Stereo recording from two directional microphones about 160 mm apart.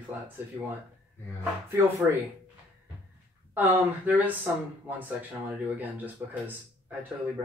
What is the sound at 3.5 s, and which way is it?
Speech, 10° right (ahead or behind).